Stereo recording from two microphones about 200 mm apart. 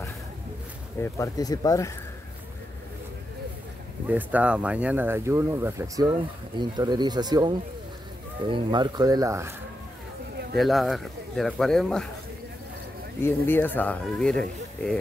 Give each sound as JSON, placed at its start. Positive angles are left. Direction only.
{"t": 1.0, "sound": "speech", "side_deg": 15}
{"t": 4.1, "sound": "speech", "side_deg": -5}
{"t": 10.5, "sound": "speech", "side_deg": 0}
{"t": 13.5, "sound": "speech", "side_deg": 10}